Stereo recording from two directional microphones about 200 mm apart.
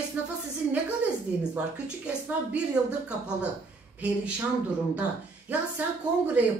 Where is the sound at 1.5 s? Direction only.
5° right (ahead or behind).